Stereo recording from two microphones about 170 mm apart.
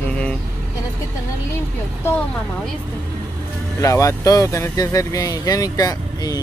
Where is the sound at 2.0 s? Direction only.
10° left (ahead or behind).